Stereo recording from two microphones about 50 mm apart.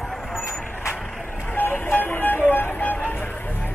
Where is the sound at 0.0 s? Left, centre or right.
Centre.